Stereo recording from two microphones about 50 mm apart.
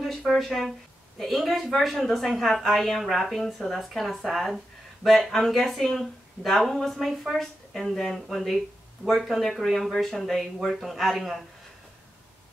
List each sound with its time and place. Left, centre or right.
0.3 s a woman's voice: centre